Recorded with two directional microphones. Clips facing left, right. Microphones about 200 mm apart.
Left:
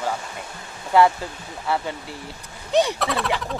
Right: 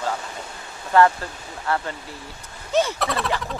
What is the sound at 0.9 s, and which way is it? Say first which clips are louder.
Speech: even; 15° left (ahead or behind).